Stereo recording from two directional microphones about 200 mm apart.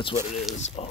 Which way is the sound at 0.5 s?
35° left (ahead or behind).